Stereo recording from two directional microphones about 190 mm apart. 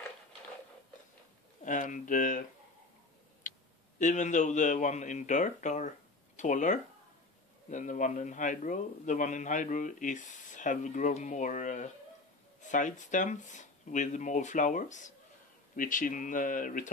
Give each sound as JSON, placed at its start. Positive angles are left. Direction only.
{"t": 1.6, "sound": "speech", "side_deg": 40}
{"t": 3.4, "sound": "a sound", "side_deg": 45}
{"t": 4.0, "sound": "a man's voice", "side_deg": 40}